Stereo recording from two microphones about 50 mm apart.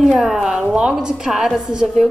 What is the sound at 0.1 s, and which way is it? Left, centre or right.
Speech, centre.